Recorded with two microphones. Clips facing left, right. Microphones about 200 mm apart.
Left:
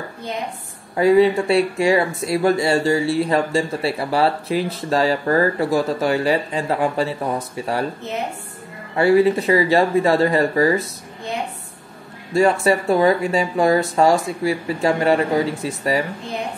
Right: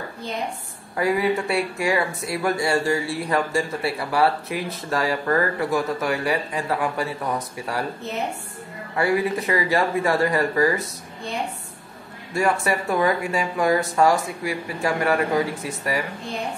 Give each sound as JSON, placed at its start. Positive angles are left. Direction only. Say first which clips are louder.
{"t": 0.9, "sound": "speech", "louder": "left 7 dB", "side_deg": 25}
{"t": 8.9, "sound": "speech", "louder": "left 7 dB", "side_deg": 25}
{"t": 12.4, "sound": "speech", "louder": "left 6 dB", "side_deg": 25}